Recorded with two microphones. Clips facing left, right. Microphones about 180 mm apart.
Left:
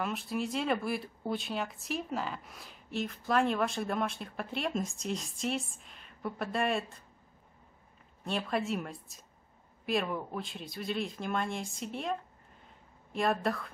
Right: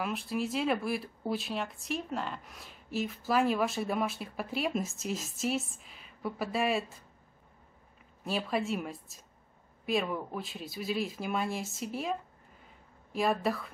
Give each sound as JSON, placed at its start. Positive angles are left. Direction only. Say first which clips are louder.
{"t": 0.0, "sound": "speech", "louder": "right 1 dB", "side_deg": 0}
{"t": 8.2, "sound": "speech", "louder": "right 1 dB", "side_deg": 0}